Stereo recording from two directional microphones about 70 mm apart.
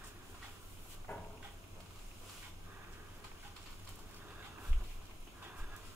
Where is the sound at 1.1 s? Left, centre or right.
Left.